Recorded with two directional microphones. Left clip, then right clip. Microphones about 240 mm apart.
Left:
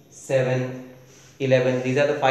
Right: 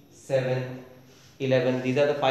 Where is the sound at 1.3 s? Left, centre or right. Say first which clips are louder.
Left 4 dB; centre.